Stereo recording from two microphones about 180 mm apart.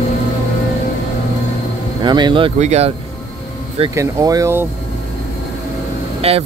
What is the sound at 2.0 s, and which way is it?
Speech, 25° right (ahead or behind).